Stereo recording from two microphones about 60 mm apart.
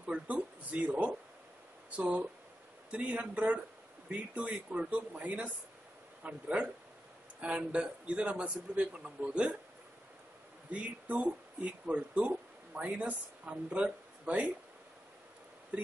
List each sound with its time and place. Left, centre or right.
0.0 s a sound: right
1.9 s a man's voice: right
10.7 s speech: right